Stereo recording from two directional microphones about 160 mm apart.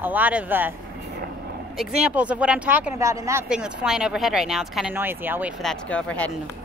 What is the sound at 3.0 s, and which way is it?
Speech, 20° right (ahead or behind).